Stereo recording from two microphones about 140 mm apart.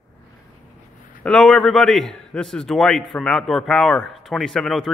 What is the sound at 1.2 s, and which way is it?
Speech, 5° left (ahead or behind).